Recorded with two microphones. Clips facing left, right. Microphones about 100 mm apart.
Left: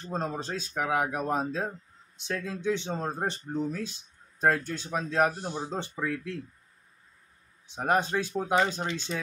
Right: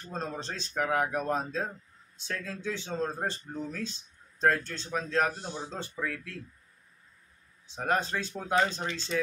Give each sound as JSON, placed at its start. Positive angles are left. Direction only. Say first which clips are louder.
{"t": 0.1, "sound": "speech", "louder": "left 4 dB", "side_deg": 15}
{"t": 7.7, "sound": "speech", "louder": "left 3 dB", "side_deg": 20}